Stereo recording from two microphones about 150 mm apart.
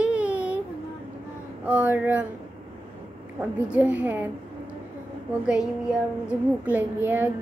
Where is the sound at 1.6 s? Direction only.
10° right (ahead or behind).